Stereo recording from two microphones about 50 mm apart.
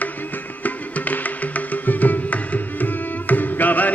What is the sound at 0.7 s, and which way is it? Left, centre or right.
Music, left.